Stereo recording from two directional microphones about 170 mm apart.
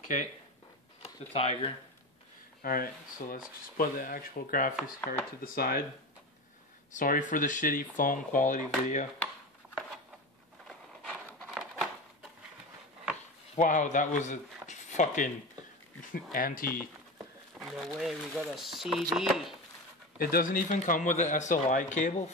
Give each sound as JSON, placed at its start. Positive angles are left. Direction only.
{"t": 1.3, "sound": "speech", "side_deg": 35}
{"t": 2.6, "sound": "speech", "side_deg": 60}
{"t": 6.9, "sound": "speech", "side_deg": 50}
{"t": 10.7, "sound": "a sound", "side_deg": 10}
{"t": 13.6, "sound": "speech", "side_deg": 45}
{"t": 17.6, "sound": "speech", "side_deg": 0}
{"t": 20.2, "sound": "speech", "side_deg": 60}